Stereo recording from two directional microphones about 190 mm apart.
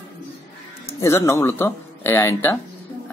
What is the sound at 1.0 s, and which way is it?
Speech, 15° left (ahead or behind).